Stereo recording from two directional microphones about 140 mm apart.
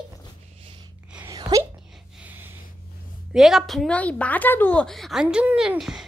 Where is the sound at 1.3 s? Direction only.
30° right (ahead or behind).